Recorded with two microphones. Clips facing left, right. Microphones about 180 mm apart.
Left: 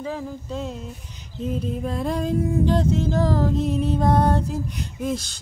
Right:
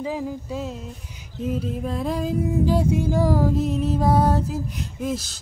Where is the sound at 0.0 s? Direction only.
15° right (ahead or behind).